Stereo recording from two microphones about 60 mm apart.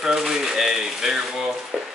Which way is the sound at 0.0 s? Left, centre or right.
Centre.